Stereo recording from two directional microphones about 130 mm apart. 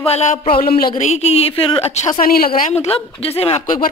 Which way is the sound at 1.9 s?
65° left (ahead or behind).